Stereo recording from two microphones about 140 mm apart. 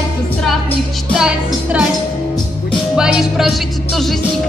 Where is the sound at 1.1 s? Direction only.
5° right (ahead or behind).